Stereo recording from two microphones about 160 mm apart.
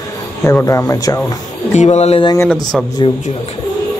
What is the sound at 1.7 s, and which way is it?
Speech, 45° left (ahead or behind).